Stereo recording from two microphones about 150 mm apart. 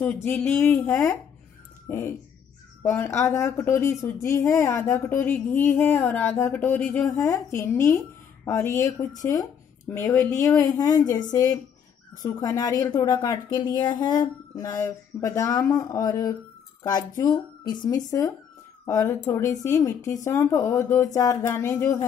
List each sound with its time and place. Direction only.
0.0 s speech: 10° left (ahead or behind)